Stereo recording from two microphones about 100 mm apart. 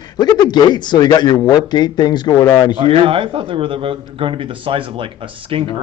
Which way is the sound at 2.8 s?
70° right (ahead or behind).